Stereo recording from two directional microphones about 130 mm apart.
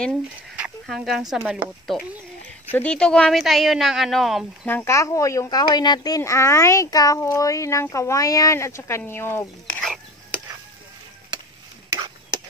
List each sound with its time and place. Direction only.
0.1 s speech: 5° right (ahead or behind)
1.4 s speech: 10° right (ahead or behind)
2.7 s a woman's voice: 10° left (ahead or behind)
4.6 s speech: 20° left (ahead or behind)